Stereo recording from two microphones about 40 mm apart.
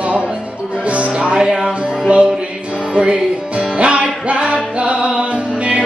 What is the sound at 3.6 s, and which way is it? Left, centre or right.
Music, right.